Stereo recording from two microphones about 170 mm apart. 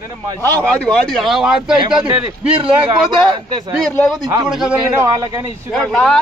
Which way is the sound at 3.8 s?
5° left (ahead or behind).